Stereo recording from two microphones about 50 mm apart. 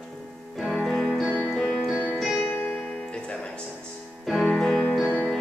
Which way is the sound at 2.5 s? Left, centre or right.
Left.